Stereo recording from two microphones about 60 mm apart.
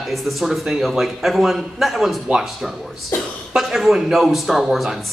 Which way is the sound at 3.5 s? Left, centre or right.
Centre.